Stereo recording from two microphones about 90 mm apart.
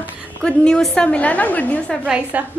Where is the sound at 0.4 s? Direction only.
5° left (ahead or behind).